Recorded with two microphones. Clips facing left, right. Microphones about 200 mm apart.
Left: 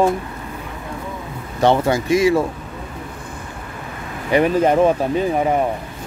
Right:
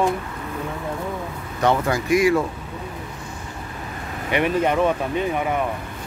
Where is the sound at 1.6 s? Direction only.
30° left (ahead or behind).